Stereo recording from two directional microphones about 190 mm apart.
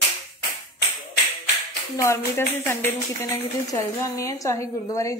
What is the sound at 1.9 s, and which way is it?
A woman's voice, 15° left (ahead or behind).